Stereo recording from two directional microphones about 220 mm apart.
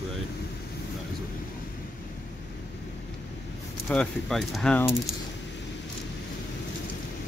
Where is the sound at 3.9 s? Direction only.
5° left (ahead or behind).